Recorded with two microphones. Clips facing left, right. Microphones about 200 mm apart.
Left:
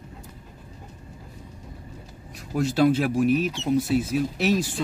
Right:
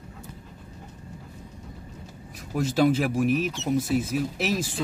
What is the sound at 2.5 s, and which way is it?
Speech, 5° right (ahead or behind).